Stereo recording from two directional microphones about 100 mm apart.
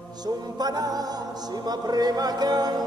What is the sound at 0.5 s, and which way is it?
Music, 40° right (ahead or behind).